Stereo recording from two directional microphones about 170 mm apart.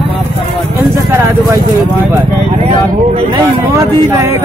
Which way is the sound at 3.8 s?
15° right (ahead or behind).